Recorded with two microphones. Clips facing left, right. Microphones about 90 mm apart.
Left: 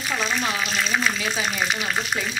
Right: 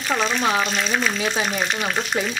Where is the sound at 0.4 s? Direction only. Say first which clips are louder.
Right 5 dB; 35° right (ahead or behind).